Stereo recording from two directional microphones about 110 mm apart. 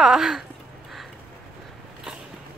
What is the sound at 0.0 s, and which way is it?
Speech, 5° right (ahead or behind).